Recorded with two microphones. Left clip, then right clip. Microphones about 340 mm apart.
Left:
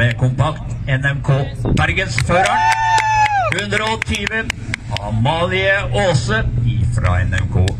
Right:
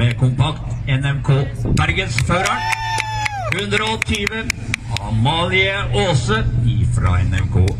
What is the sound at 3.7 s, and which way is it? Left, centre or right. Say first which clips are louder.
Speech: left 1 dB; centre.